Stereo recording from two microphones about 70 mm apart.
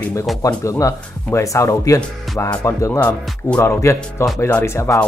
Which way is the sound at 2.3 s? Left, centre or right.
Centre.